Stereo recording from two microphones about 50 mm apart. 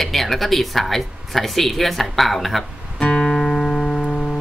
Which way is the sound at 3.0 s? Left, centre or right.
Centre.